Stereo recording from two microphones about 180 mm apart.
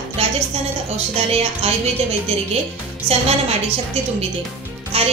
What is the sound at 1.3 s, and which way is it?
Speech, 35° right (ahead or behind).